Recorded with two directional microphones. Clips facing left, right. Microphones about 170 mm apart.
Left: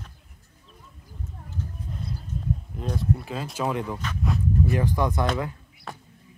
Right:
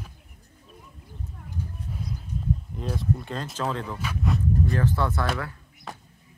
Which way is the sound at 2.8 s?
Centre (ahead or behind).